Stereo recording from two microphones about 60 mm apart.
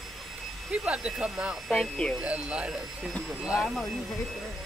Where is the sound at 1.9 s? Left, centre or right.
Centre.